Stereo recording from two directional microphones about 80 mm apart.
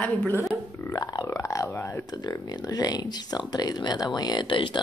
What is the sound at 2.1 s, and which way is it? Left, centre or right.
Speech, left.